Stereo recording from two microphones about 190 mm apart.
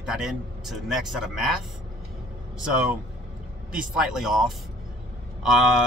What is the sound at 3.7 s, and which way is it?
Speech, 5° right (ahead or behind).